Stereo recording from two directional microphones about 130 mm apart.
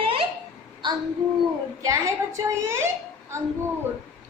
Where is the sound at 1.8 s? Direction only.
25° right (ahead or behind).